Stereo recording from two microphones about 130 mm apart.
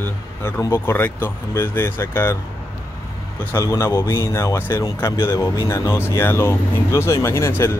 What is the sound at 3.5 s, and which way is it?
Speech, 20° left (ahead or behind).